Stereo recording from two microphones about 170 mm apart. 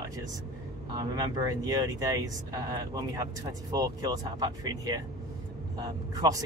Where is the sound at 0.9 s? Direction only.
20° right (ahead or behind).